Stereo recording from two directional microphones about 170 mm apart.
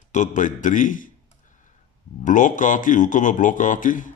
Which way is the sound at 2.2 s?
50° left (ahead or behind).